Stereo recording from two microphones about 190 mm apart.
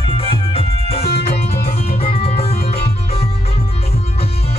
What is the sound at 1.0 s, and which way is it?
Music, 60° left (ahead or behind).